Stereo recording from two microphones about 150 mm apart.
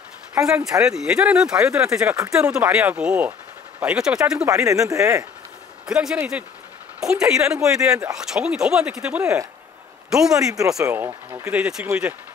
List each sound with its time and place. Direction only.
0.7 s speech: 5° right (ahead or behind)
4.5 s speech: 20° right (ahead or behind)
5.9 s speech: 5° right (ahead or behind)
10.8 s speech: 20° right (ahead or behind)
11.5 s speech: 10° right (ahead or behind)